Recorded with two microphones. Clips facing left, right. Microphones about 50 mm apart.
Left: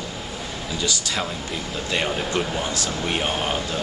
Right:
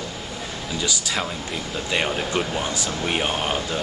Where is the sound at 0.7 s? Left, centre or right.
Centre.